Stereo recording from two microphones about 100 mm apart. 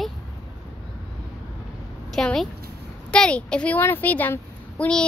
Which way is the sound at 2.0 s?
5° left (ahead or behind).